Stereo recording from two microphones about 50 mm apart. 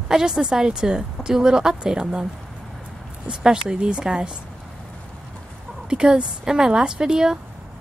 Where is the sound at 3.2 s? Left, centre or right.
Centre.